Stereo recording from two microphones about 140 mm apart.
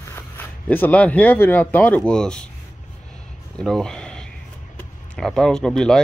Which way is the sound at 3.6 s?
5° left (ahead or behind).